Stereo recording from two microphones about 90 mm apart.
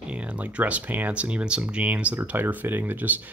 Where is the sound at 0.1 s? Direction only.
15° right (ahead or behind).